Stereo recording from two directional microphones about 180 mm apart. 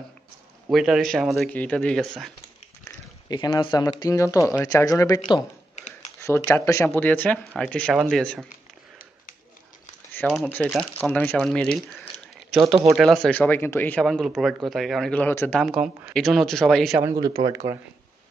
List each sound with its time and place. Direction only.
0.7 s speech: centre (ahead or behind)
2.8 s speech: 25° left (ahead or behind); by 8.5 s 5° left (ahead or behind)
10.2 s speech: 10° right (ahead or behind)
11.0 s speech: 10° left (ahead or behind)
12.4 s a sound: centre (ahead or behind)
12.9 s speech: centre (ahead or behind)
15.6 s speech: 5° right (ahead or behind)
17.0 s speech: 20° right (ahead or behind)